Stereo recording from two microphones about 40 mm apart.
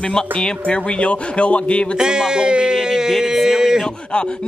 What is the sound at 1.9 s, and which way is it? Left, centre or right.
A man's voice, centre.